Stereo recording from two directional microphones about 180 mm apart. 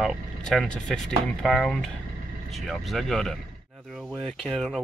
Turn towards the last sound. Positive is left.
turn(degrees=5)  # may be behind; listen again after turning